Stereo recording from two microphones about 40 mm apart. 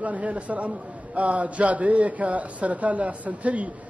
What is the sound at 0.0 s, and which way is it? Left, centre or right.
A man's voice, right.